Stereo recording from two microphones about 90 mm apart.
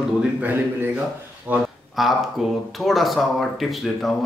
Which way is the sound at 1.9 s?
Centre (ahead or behind).